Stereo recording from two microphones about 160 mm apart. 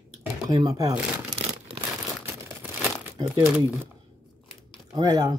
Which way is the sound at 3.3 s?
5° right (ahead or behind).